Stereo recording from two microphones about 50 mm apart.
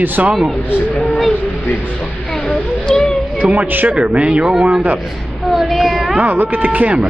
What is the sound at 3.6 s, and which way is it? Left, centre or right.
Speech, right.